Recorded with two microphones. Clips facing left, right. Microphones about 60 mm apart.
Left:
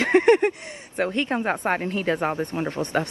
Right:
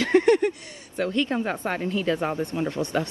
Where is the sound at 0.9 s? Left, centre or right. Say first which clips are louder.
Left 1 dB; left.